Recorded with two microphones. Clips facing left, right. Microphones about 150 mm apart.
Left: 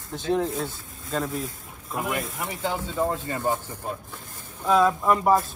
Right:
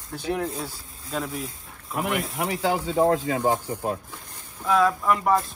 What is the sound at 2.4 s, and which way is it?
Speech, 90° right.